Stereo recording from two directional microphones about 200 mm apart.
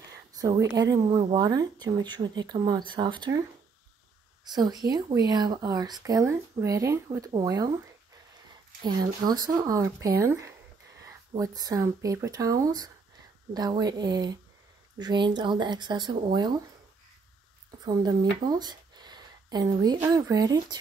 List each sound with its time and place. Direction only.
0.1 s speech: 20° right (ahead or behind)
4.5 s speech: 20° right (ahead or behind)
8.8 s speech: 20° right (ahead or behind)
17.8 s speech: 20° right (ahead or behind)